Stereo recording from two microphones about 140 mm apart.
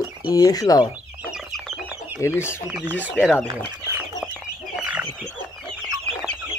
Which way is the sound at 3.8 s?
20° right (ahead or behind).